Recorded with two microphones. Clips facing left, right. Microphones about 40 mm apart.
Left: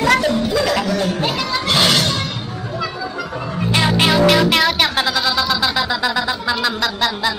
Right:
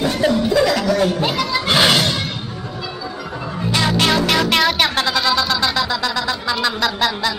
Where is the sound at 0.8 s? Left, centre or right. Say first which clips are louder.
Right 3 dB; right.